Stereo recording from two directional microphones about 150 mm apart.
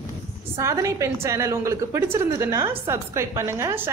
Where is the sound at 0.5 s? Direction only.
20° right (ahead or behind).